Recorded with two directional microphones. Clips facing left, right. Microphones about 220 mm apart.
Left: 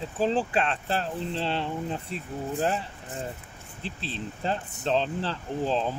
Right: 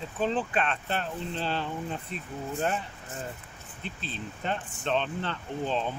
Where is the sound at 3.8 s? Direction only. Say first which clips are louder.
Left 3 dB; 30° left (ahead or behind).